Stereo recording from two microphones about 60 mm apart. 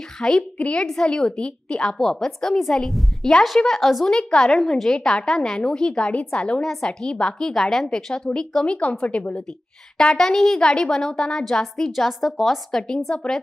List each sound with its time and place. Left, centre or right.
0.2 s a woman's voice: centre
0.6 s a woman's voice: left
8.5 s a woman's voice: centre
9.9 s a woman's voice: centre